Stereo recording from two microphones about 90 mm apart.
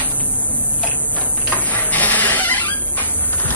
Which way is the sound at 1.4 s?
15° left (ahead or behind).